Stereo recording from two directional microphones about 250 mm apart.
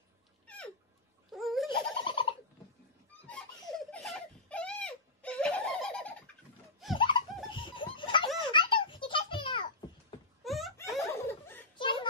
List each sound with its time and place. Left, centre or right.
1.3 s baby laughter: centre
1.7 s turkey: centre
3.3 s giggle: centre
7.0 s laughter: centre
8.4 s a sound: centre
10.4 s a sound: centre